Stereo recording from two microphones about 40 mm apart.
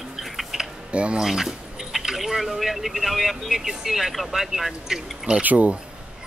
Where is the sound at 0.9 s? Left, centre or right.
Right.